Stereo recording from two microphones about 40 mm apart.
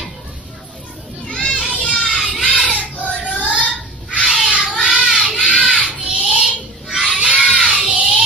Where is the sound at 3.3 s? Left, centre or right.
Right.